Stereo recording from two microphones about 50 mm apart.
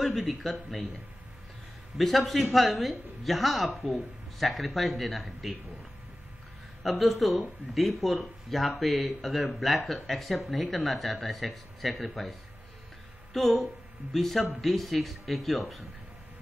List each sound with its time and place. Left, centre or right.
0.0 s a woman's voice: centre
2.0 s a woman's voice: centre
6.8 s a woman's voice: centre